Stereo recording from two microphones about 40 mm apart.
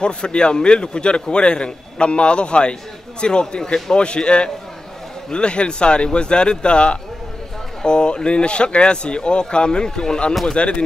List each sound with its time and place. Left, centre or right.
0.0 s a man's voice: left